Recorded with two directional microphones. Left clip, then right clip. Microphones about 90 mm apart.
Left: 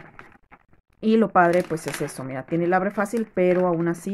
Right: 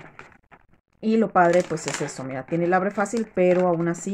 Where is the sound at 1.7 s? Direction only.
45° left (ahead or behind).